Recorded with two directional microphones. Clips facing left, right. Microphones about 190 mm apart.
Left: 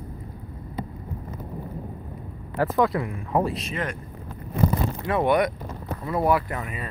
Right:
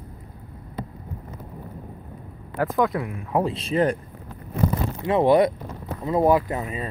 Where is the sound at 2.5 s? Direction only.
Centre (ahead or behind).